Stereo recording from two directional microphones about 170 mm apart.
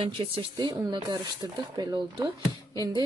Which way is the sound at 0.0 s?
30° right (ahead or behind).